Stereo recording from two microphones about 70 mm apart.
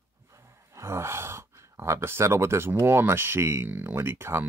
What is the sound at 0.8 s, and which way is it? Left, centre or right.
Speech, right.